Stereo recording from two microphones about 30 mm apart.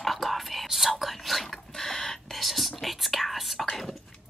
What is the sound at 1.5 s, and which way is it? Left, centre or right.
Whispering, centre.